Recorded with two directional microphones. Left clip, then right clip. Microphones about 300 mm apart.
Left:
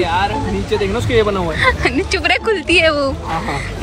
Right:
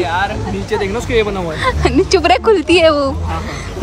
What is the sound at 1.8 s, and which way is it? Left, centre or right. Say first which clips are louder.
Speech: right 4 dB; centre.